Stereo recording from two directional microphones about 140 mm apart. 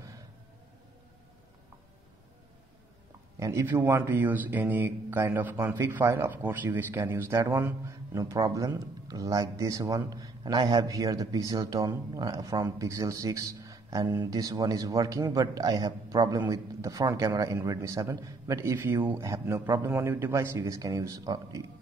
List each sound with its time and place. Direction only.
3.3 s speech: 25° right (ahead or behind)